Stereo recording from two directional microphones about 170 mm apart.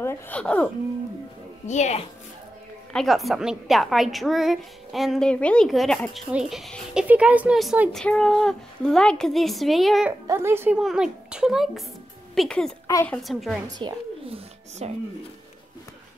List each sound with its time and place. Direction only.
0.0 s speech: 10° left (ahead or behind)
1.7 s speech: 40° left (ahead or behind)
2.9 s a woman's voice: centre (ahead or behind)
10.2 s speech: 15° right (ahead or behind)
10.8 s a woman's voice: 5° right (ahead or behind)
12.8 s a woman's voice: 20° left (ahead or behind)
13.1 s a woman's voice: centre (ahead or behind)
13.7 s speech: 25° right (ahead or behind)
14.8 s speech: 40° right (ahead or behind)